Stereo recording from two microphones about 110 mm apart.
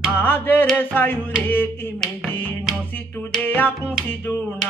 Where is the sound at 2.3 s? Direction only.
20° left (ahead or behind).